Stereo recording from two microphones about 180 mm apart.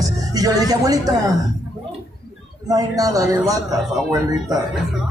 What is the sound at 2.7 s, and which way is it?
Speech, 20° right (ahead or behind).